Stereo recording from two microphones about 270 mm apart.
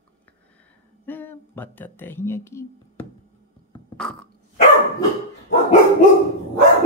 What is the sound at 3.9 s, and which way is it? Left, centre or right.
Burping, centre.